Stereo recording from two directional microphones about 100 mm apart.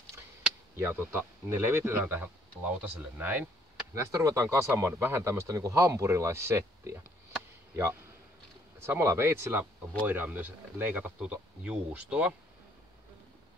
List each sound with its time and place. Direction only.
0.7 s speech: 20° right (ahead or behind)
3.9 s a man's voice: 30° right (ahead or behind); by 12.4 s 10° right (ahead or behind)